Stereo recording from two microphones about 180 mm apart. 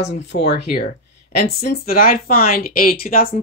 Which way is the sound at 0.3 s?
60° left (ahead or behind).